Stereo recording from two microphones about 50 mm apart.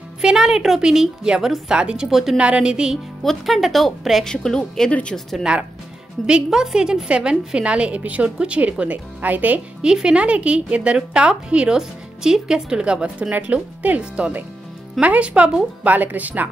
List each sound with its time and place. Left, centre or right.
0.2 s a woman's voice: centre
2.0 s a woman's voice: centre
2.3 s a woman's voice: right
3.3 s a woman's voice: centre
4.3 s a woman's voice: centre
5.5 s a woman's voice: centre; by 9.6 s right
9.8 s a woman's voice: centre; by 16.4 s right